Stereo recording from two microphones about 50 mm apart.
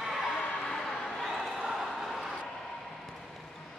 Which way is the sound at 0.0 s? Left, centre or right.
Centre.